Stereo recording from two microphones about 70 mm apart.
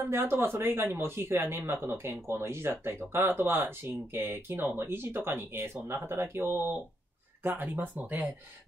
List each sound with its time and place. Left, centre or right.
0.1 s speech: right